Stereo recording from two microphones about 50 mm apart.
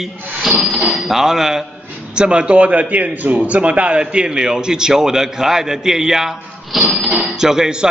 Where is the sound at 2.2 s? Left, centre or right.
Right.